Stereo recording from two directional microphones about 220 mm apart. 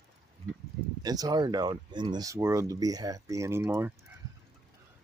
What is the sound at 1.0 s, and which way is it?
Speech, 15° right (ahead or behind).